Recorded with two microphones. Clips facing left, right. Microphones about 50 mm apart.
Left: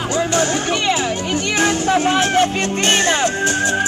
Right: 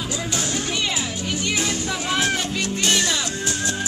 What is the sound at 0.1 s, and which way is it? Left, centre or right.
Music, left.